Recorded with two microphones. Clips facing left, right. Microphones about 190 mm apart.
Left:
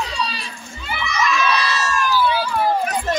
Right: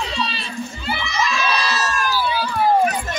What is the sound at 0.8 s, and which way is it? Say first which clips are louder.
Crowd: left 2 dB; 30° right (ahead or behind).